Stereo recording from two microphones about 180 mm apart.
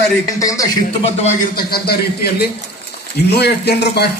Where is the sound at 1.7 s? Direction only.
60° left (ahead or behind).